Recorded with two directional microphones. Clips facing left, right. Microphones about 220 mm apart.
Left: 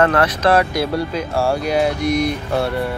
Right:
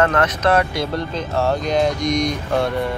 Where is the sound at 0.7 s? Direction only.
10° left (ahead or behind).